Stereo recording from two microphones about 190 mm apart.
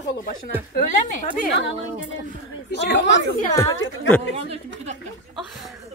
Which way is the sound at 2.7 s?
65° left (ahead or behind).